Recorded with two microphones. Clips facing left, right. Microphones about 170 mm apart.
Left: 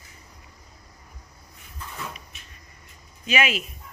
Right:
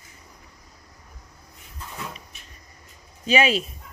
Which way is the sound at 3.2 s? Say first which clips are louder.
Right 4 dB; 30° right (ahead or behind).